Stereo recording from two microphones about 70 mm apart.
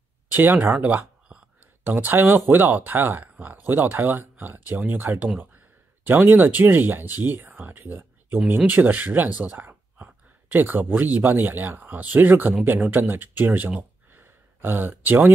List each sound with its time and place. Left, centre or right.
0.3 s speech: right
9.4 s a sound: right
11.3 s speech: right